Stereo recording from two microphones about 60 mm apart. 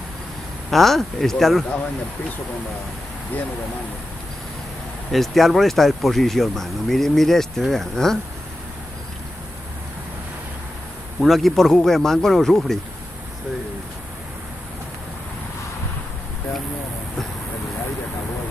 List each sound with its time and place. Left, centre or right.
0.7 s speech: centre
3.3 s speech: left
5.1 s speech: centre
11.1 s speech: centre